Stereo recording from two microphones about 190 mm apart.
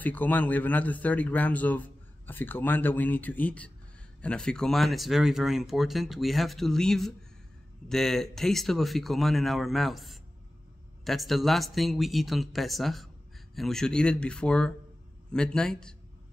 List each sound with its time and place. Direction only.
0.0 s speech: 10° left (ahead or behind)